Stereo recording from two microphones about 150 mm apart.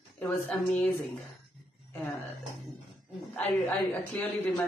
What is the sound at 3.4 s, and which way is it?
A man's voice, 10° left (ahead or behind).